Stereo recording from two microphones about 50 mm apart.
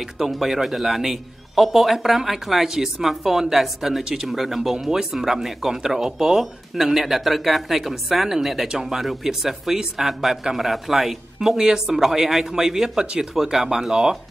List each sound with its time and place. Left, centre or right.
0.0 s a man's voice: centre
13.3 s speech: centre